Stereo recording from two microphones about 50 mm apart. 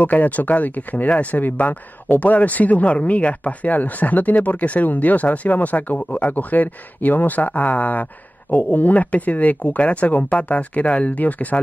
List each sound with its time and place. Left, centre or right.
0.0 s speech: left